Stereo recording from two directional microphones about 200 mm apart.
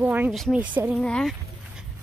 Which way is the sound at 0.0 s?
10° right (ahead or behind).